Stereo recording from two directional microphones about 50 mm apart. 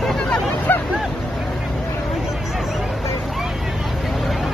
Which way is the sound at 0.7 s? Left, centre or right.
Left.